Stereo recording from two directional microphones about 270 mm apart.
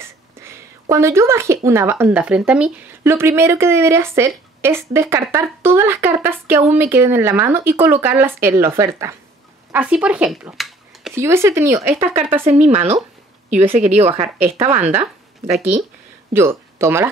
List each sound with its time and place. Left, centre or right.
0.0 s speech: centre
12.1 s speech: right
16.3 s speech: centre